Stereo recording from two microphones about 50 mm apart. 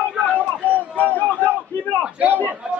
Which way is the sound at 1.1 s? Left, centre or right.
Left.